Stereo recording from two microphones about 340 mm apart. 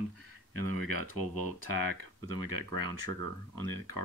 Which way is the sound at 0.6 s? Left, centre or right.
Left.